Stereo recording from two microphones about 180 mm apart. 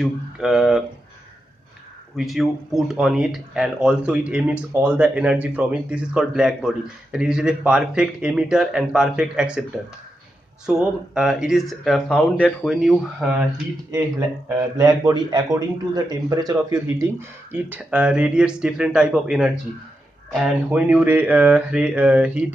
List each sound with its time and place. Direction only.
0.0 s speech: centre (ahead or behind)
2.1 s speech: centre (ahead or behind)
10.7 s speech: 5° right (ahead or behind)
14.8 s speech: 20° right (ahead or behind); by 19.5 s 5° right (ahead or behind)
20.3 s a sound: 5° right (ahead or behind)